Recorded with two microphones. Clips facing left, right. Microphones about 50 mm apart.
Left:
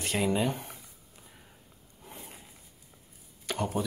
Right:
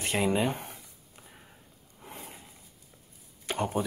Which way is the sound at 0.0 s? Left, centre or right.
Right.